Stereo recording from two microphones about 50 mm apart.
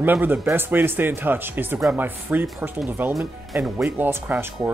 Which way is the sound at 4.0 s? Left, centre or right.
Right.